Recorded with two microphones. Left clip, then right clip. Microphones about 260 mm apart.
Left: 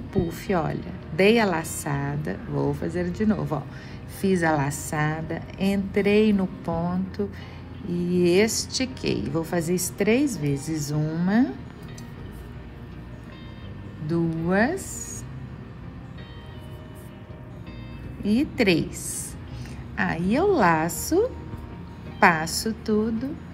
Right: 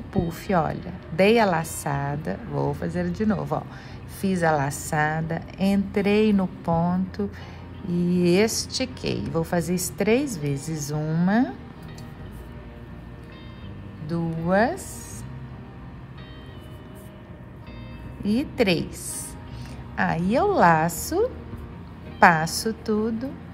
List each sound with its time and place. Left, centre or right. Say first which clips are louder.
0.1 s a woman's voice: right 1 dB; right
14.0 s a woman's voice: left 2 dB; centre
18.2 s a woman's voice: left 1 dB; right
20.0 s a woman's voice: right 2 dB; right